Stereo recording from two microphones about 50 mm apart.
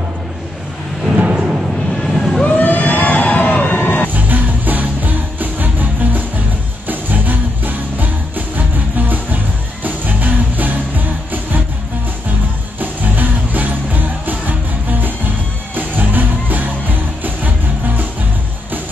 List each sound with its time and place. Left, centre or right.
1.1 s a sound: centre
2.0 s vehicle: centre
2.5 s crowd: left
4.1 s music: right
12.8 s music: right